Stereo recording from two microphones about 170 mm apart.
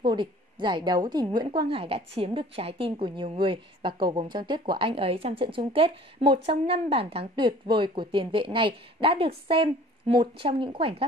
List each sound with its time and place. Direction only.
0.0 s a woman's voice: 25° right (ahead or behind)